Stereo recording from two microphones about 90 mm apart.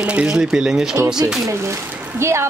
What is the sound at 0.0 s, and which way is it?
Speech, 10° right (ahead or behind).